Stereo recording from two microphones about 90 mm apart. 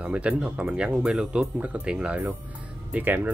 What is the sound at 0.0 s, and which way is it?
Speech, 15° right (ahead or behind).